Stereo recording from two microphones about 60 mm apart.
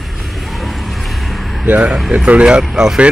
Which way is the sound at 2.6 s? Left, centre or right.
Centre.